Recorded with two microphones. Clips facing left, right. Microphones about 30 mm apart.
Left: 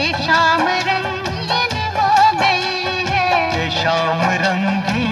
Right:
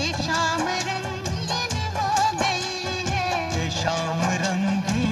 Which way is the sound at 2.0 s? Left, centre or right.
Left.